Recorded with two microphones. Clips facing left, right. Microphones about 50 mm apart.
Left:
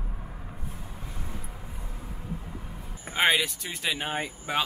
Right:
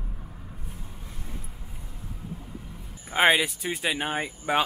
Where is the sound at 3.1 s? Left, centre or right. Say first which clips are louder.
Right 3 dB; centre.